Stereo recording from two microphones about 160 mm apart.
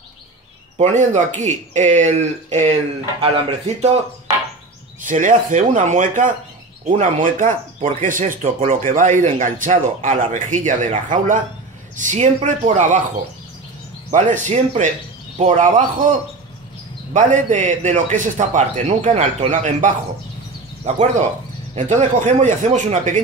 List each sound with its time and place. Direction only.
0.7 s speech: 50° right (ahead or behind)
5.0 s speech: 55° right (ahead or behind)
6.8 s speech: 40° right (ahead or behind)
7.2 s speech: 55° right (ahead or behind)
14.1 s speech: 50° right (ahead or behind)
17.1 s speech: 50° right (ahead or behind)